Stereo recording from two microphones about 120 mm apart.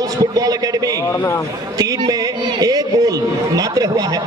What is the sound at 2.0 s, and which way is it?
Speech, 30° right (ahead or behind).